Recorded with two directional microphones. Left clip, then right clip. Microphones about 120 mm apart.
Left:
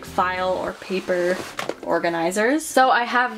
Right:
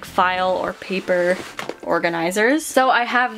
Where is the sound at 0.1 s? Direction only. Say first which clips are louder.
Right 4 dB; 40° right (ahead or behind).